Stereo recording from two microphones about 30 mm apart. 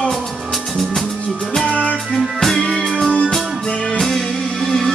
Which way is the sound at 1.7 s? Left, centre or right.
Left.